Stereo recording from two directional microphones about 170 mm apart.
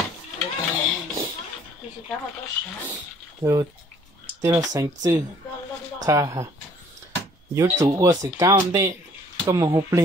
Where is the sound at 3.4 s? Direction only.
25° right (ahead or behind).